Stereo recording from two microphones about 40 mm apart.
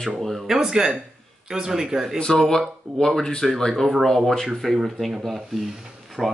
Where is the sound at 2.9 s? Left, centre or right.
Right.